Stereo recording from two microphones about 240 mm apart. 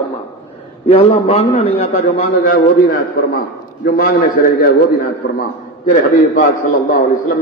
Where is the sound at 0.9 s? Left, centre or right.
Left.